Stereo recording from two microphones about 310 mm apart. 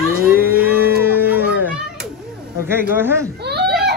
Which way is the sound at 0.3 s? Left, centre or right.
Centre.